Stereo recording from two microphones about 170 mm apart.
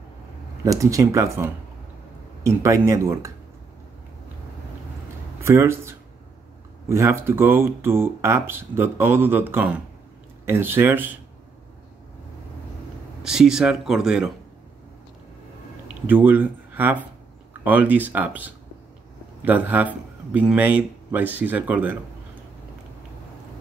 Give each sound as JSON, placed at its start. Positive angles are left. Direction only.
{"t": 0.7, "sound": "speech", "side_deg": -20}
{"t": 5.4, "sound": "speech", "side_deg": -15}
{"t": 13.2, "sound": "speech", "side_deg": -5}
{"t": 16.1, "sound": "speech", "side_deg": -10}